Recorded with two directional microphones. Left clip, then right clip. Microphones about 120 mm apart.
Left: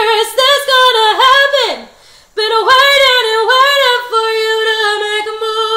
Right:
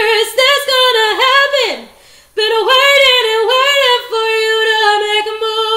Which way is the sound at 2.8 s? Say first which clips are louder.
Even; 35° right (ahead or behind).